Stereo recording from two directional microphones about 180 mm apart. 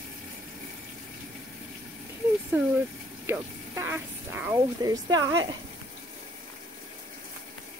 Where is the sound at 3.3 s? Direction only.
15° right (ahead or behind).